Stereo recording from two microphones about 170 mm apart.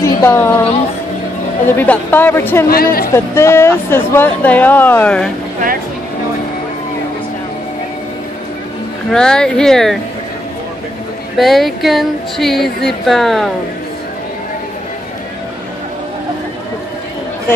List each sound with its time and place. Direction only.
0.0 s a sound: 15° left (ahead or behind)
1.8 s speech: 10° left (ahead or behind)
2.7 s speech: 60° left (ahead or behind)
3.3 s speech: 15° left (ahead or behind)
9.1 s speech: 5° left (ahead or behind)
11.3 s speech: centre (ahead or behind)